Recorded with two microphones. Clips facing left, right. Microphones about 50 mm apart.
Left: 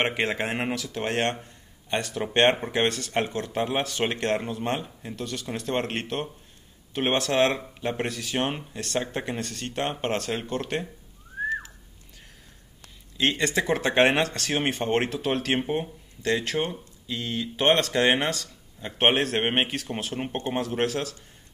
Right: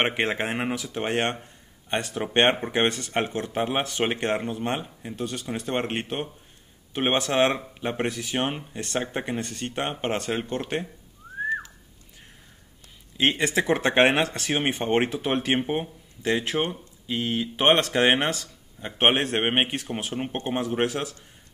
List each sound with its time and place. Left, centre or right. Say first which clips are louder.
0.2 s speech: right 1 dB; right
4.4 s speech: right 1 dB; centre
4.6 s speech: even; centre
13.2 s speech: right 1 dB; right
20.4 s speech: right 1 dB; centre